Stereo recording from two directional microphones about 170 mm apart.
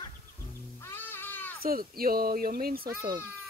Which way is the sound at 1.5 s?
60° right (ahead or behind).